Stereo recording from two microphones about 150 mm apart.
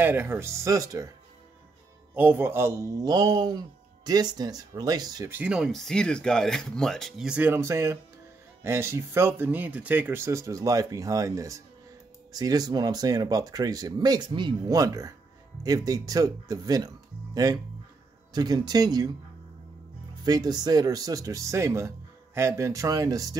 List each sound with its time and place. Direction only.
0.0 s speech: 15° right (ahead or behind)
2.1 s a man's voice: 15° right (ahead or behind)
5.3 s a man's voice: 10° right (ahead or behind); by 19.0 s 25° right (ahead or behind)
20.2 s a man's voice: 25° right (ahead or behind)